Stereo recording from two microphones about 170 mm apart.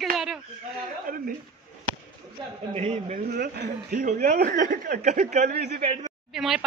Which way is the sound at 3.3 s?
65° right (ahead or behind).